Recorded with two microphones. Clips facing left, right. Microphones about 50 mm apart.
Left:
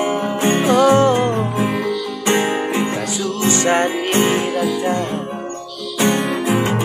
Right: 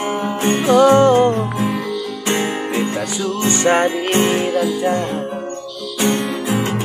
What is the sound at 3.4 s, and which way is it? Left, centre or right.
Music, centre.